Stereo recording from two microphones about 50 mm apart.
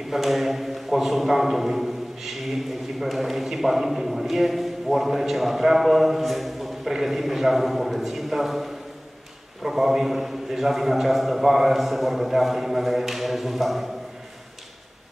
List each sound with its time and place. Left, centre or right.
0.1 s a man's voice: centre